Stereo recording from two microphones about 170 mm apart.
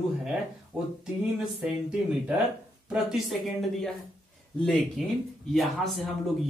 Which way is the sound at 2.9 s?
Centre (ahead or behind).